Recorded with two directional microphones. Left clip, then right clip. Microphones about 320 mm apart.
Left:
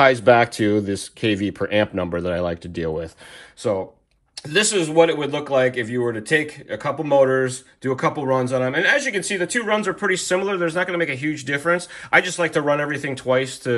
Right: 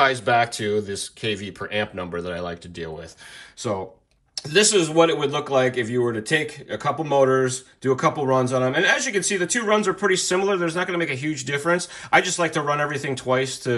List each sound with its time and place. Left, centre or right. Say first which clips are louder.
0.0 s speech: left 5 dB; centre
3.6 s speech: left 5 dB; centre